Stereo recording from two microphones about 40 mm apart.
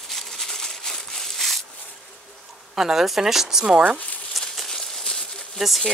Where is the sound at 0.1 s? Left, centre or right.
Centre.